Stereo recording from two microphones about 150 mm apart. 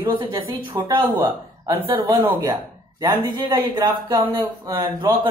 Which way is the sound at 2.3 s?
20° right (ahead or behind).